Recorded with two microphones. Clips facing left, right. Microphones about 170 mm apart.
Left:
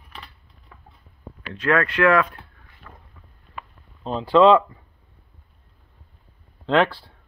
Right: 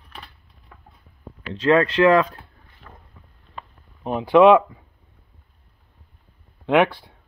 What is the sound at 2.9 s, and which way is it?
Boat, 25° right (ahead or behind).